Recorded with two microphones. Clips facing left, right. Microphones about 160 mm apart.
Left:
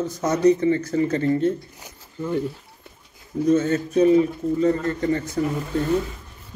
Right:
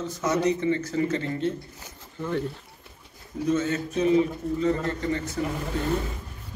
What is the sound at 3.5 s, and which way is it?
A man's voice, 40° left (ahead or behind).